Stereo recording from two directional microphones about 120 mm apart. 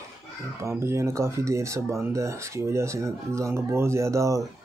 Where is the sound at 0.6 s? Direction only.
25° right (ahead or behind).